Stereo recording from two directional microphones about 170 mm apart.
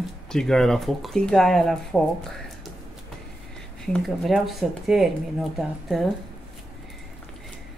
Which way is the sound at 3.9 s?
Centre (ahead or behind).